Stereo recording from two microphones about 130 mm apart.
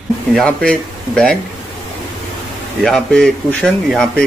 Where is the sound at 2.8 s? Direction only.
5° left (ahead or behind).